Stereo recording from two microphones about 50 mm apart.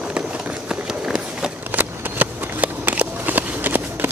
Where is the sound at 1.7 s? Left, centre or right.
Right.